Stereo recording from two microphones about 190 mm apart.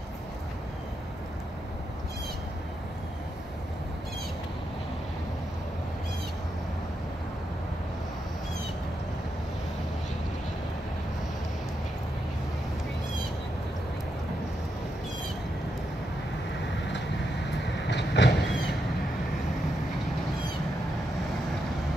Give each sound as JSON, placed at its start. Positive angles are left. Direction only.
{"t": 17.8, "sound": "train", "side_deg": 65}